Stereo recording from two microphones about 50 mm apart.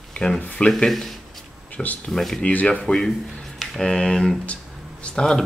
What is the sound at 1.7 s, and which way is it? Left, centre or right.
Speech, left.